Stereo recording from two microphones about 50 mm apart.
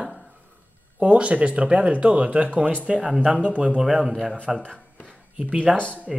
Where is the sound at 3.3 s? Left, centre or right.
Right.